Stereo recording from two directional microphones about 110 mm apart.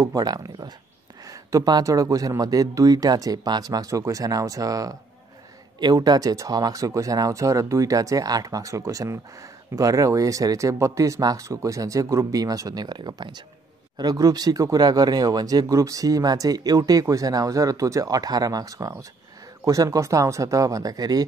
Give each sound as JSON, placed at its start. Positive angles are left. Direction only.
{"t": 0.0, "sound": "speech", "side_deg": -35}